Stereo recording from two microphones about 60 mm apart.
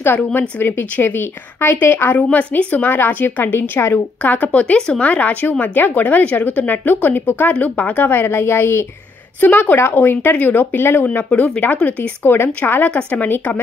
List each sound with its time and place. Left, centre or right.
0.0 s speech: left
2.2 s speech: left
9.4 s speech: left
11.6 s speech: left
12.2 s speech: left
12.9 s speech: left